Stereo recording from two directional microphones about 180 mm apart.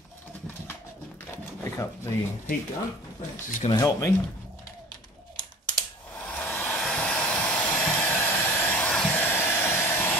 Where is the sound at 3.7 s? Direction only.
20° left (ahead or behind).